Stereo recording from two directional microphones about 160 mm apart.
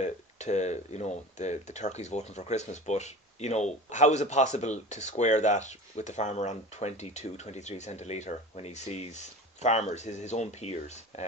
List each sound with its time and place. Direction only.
0.0 s speech: 45° left (ahead or behind)